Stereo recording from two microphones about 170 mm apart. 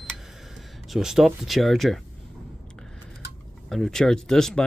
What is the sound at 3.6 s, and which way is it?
Speech, centre (ahead or behind).